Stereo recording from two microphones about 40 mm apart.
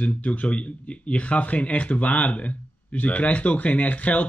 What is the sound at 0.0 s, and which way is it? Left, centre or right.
Speech, left.